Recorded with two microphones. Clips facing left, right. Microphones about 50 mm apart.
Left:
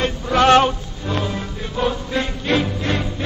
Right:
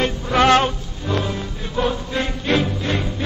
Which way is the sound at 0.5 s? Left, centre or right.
Left.